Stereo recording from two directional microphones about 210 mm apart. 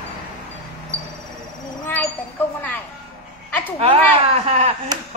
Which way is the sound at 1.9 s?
10° left (ahead or behind).